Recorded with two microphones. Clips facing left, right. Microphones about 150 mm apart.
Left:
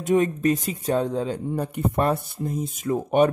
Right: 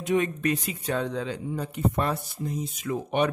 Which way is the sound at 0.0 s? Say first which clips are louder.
Left 5 dB; 45° left (ahead or behind).